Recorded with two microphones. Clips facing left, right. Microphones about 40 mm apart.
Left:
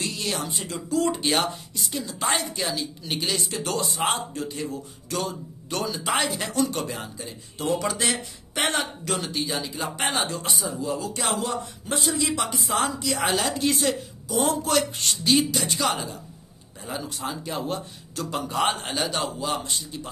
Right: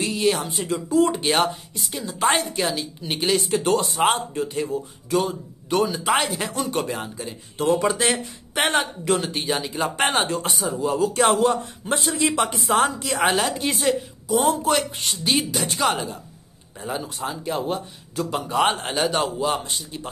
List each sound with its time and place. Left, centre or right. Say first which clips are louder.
0.0 s music: right 7 dB; right
0.7 s speech: right 5 dB; right
1.8 s speech: left 3 dB; centre
2.1 s a man's voice: right 6 dB; right
2.5 s speech: right 4 dB; right
4.6 s speech: right 6 dB; centre
7.5 s speech: right 5 dB; right
7.8 s speech: right 5 dB; right
9.2 s a man's voice: right 3 dB; right
13.7 s a woman's voice: right 3 dB; centre
14.5 s speech: right 2 dB; right
15.6 s a man's voice: right 3 dB; right
17.2 s speech: right 4 dB; centre; by 20.1 s right